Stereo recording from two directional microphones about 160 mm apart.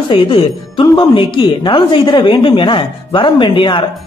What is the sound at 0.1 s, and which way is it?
A man's voice, 30° left (ahead or behind).